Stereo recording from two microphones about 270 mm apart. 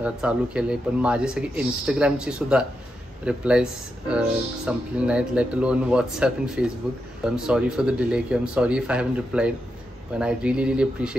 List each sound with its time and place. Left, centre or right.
0.0 s speech: centre
4.6 s speech: centre